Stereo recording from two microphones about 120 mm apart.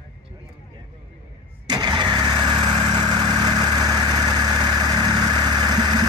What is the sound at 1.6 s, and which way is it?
Vehicle, 35° right (ahead or behind).